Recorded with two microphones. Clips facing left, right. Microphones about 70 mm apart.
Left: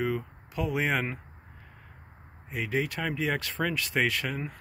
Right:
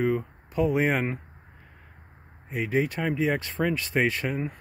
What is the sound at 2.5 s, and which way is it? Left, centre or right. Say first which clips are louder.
Speech: right 4 dB; right.